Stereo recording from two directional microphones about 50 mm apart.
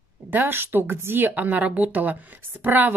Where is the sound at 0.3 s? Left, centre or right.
Right.